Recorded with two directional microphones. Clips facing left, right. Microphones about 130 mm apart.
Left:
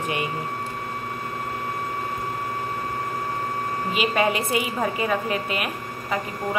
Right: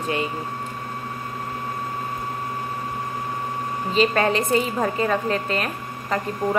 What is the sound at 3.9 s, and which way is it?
A woman's voice, 10° left (ahead or behind).